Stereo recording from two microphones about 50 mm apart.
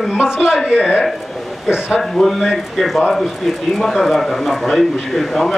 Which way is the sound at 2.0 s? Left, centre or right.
Centre.